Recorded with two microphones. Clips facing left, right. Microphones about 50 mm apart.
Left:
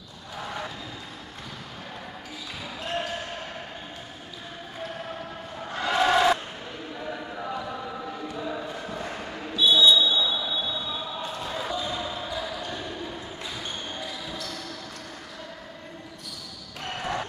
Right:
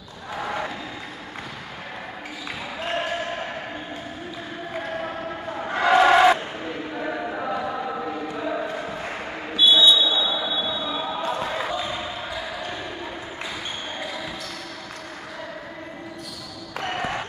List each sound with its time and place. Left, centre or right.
0.4 s vehicle: right
2.8 s basketball bounce: right
5.8 s a sound: right
8.7 s basketball bounce: right
16.8 s basketball bounce: right